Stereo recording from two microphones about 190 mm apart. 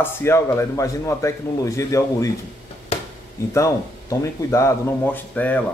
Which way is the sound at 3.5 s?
15° left (ahead or behind).